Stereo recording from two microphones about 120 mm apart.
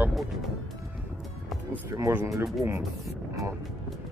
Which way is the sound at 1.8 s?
20° right (ahead or behind).